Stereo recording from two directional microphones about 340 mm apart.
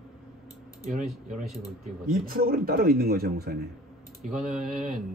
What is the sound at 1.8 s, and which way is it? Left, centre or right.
Speech, right.